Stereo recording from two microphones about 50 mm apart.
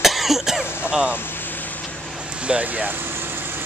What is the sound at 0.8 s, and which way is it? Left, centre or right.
Speech, centre.